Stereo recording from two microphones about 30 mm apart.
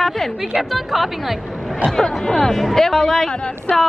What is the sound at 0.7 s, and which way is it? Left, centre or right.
Speech, centre.